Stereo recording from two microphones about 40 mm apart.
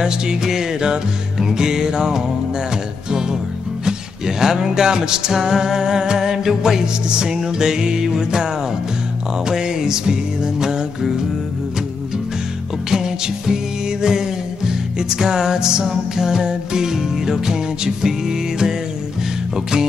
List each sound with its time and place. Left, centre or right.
0.0 s music: centre
4.4 s music: centre
9.5 s music: centre
12.9 s music: centre